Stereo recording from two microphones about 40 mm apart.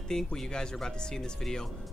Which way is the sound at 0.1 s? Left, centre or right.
Centre.